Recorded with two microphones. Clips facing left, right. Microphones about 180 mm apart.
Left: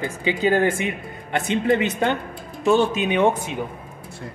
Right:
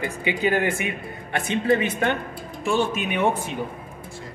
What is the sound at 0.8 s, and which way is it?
Speech, 25° left (ahead or behind).